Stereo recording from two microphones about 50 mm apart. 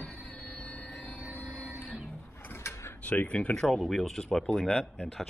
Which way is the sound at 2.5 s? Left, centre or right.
Left.